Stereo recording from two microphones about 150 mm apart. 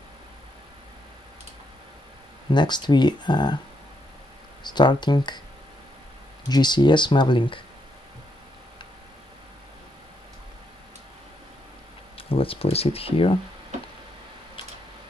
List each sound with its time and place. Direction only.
2.5 s speech: 30° left (ahead or behind)
4.6 s speech: 30° left (ahead or behind)
6.5 s speech: 30° left (ahead or behind)
12.2 s speech: 40° left (ahead or behind)